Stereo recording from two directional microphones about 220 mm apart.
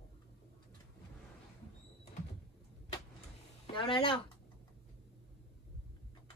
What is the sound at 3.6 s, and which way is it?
Speech, 20° left (ahead or behind).